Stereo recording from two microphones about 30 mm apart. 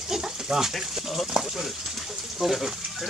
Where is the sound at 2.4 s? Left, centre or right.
Centre.